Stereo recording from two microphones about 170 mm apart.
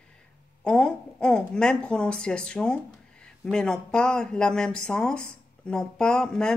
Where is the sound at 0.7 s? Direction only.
5° left (ahead or behind).